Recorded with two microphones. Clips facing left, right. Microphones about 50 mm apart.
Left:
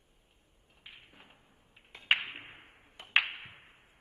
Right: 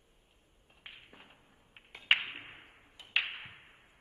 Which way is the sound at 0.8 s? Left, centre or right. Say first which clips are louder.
Right 1 dB; right.